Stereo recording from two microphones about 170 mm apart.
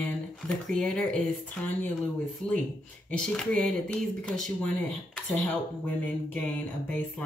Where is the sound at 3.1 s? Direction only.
5° left (ahead or behind).